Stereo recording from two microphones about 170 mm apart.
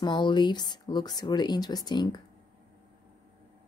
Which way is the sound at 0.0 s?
25° left (ahead or behind).